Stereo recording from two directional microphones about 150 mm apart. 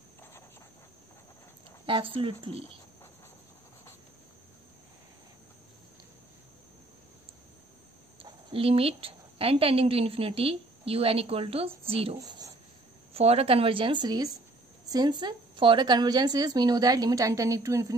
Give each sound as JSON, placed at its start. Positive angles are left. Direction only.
{"t": 1.9, "sound": "a woman's voice", "side_deg": -35}
{"t": 8.2, "sound": "a woman's voice", "side_deg": -35}
{"t": 12.2, "sound": "a woman's voice", "side_deg": -25}
{"t": 13.1, "sound": "a woman's voice", "side_deg": -40}